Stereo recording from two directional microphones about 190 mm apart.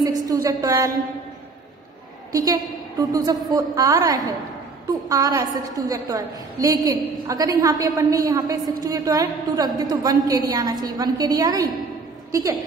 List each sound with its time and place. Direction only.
0.0 s a woman's voice: 20° right (ahead or behind)
2.3 s a woman's voice: 20° right (ahead or behind)